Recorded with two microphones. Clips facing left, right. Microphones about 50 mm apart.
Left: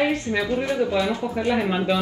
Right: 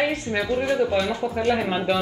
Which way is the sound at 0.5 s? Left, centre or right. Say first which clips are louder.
Right 5 dB; right.